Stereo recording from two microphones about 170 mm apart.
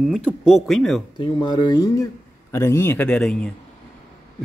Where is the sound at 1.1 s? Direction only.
25° left (ahead or behind).